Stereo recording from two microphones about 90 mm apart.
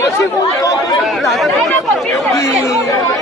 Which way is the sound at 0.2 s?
40° left (ahead or behind).